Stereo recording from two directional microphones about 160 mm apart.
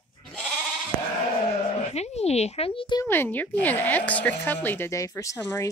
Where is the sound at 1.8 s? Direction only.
40° left (ahead or behind).